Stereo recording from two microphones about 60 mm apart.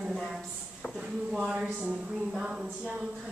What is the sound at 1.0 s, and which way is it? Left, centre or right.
A woman's voice, centre.